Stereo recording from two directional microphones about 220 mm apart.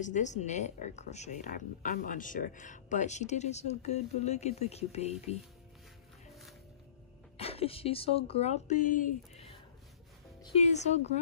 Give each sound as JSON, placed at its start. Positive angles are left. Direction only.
{"t": 0.0, "sound": "speech", "side_deg": 35}
{"t": 7.3, "sound": "speech", "side_deg": 25}